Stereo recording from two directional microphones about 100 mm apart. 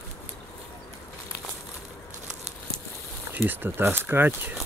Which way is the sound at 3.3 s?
20° right (ahead or behind).